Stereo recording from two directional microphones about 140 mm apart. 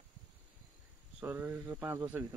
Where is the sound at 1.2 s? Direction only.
10° right (ahead or behind).